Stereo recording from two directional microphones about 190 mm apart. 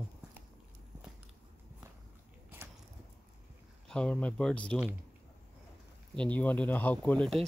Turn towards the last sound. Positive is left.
turn(degrees=0)  # may be behind; listen again after turning